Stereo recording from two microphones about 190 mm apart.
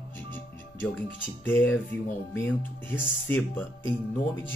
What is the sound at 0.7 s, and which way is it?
Speech, 10° left (ahead or behind).